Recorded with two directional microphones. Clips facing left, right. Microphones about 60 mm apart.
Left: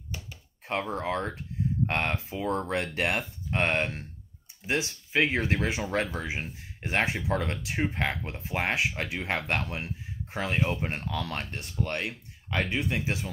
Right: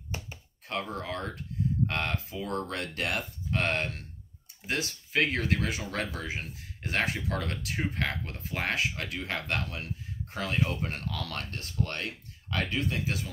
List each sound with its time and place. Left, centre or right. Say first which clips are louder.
0.7 s speech: left 4 dB; left